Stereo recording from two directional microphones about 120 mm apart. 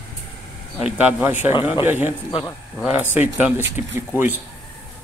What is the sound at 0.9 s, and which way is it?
Speech, 15° right (ahead or behind).